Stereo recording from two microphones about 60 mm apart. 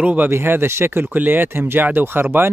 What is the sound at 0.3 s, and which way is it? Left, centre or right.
Speech, right.